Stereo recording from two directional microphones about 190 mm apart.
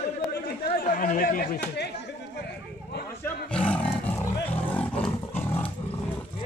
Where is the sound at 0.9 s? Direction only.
45° left (ahead or behind).